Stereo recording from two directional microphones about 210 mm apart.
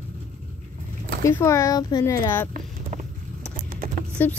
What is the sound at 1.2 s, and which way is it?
A woman's voice, 15° left (ahead or behind).